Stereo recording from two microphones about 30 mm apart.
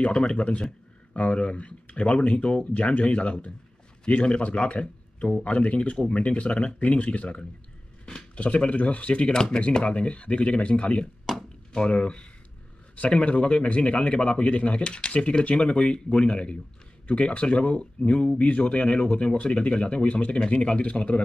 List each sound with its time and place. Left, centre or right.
0.0 s speech: left
9.3 s speech: left
9.8 s speech: left
11.3 s chop: centre
11.9 s speech: left